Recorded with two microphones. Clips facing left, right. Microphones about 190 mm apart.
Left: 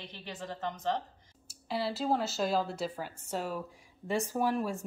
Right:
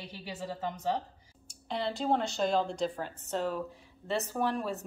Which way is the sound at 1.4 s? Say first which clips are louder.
Even; 5° left (ahead or behind).